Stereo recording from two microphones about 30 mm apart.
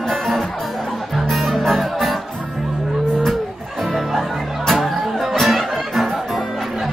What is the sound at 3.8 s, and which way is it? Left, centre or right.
Music, centre.